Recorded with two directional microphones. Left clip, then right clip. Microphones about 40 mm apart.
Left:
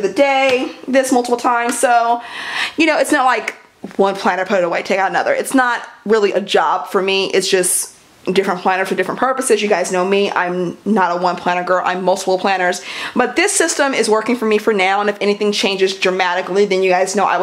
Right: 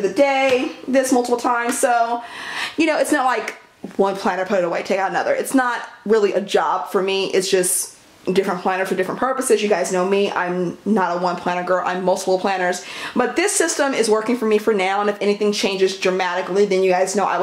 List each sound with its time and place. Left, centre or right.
0.0 s speech: left